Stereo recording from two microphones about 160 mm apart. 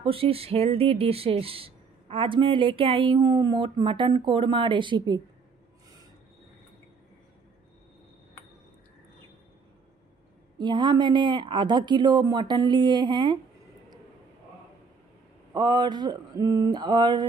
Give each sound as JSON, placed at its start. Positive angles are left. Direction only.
{"t": 0.0, "sound": "speech", "side_deg": -35}
{"t": 10.6, "sound": "speech", "side_deg": -25}
{"t": 15.5, "sound": "speech", "side_deg": -30}